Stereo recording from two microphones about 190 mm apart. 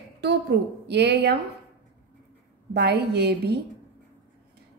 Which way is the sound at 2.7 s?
60° right (ahead or behind).